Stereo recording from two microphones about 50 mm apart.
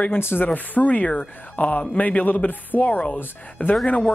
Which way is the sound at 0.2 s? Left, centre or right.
Left.